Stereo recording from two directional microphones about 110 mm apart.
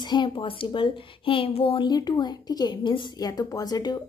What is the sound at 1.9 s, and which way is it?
A woman's voice, 40° left (ahead or behind).